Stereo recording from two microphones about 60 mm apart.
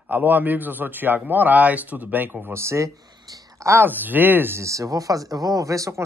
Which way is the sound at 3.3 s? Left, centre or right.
Right.